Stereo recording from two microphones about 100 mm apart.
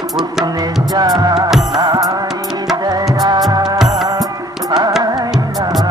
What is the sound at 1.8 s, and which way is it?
Music, 40° right (ahead or behind).